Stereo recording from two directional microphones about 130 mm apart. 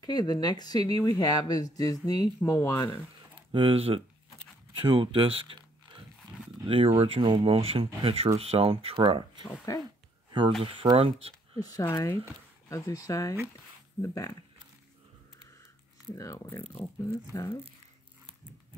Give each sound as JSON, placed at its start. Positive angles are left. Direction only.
{"t": 0.0, "sound": "speech", "side_deg": 30}
{"t": 3.5, "sound": "speech", "side_deg": -45}
{"t": 6.6, "sound": "speech", "side_deg": -45}
{"t": 9.7, "sound": "speech", "side_deg": 25}
{"t": 10.6, "sound": "speech", "side_deg": -45}
{"t": 11.8, "sound": "speech", "side_deg": 25}
{"t": 16.1, "sound": "speech", "side_deg": 20}